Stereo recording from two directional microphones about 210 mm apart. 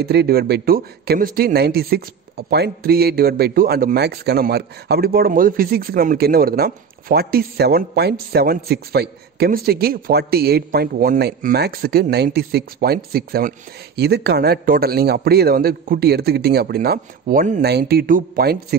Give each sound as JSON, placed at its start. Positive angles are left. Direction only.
{"t": 0.0, "sound": "speech", "side_deg": -50}